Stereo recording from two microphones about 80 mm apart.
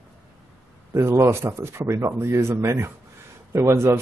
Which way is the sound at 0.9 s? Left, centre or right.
Right.